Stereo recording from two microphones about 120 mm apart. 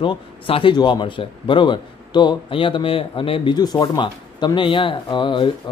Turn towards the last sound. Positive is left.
turn(degrees=45)  # may be behind; listen again after turning